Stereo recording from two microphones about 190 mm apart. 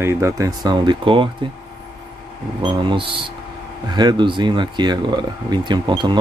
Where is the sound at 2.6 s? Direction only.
25° right (ahead or behind).